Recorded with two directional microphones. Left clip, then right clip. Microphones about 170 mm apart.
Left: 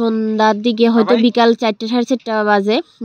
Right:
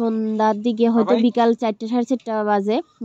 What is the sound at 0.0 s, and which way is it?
Speech, 30° left (ahead or behind).